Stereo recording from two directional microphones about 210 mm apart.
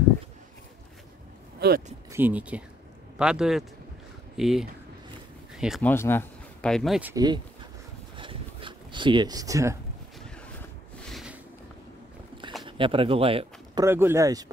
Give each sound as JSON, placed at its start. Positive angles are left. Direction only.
{"t": 2.0, "sound": "speech", "side_deg": -10}
{"t": 5.9, "sound": "speech", "side_deg": 10}
{"t": 8.2, "sound": "a sound", "side_deg": -25}
{"t": 11.1, "sound": "a sound", "side_deg": 0}
{"t": 12.6, "sound": "speech", "side_deg": -25}
{"t": 13.8, "sound": "speech", "side_deg": -10}